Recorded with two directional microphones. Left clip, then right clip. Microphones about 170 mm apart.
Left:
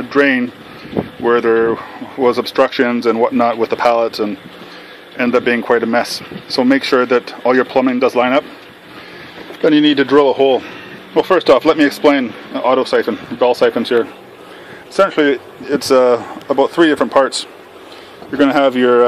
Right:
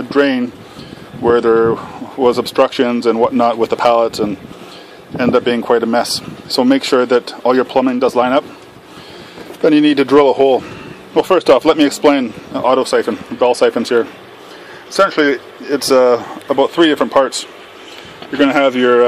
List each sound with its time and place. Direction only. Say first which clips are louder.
0.1 s a man's voice: left 1 dB; 5° right (ahead or behind)
9.6 s a man's voice: even; 10° right (ahead or behind)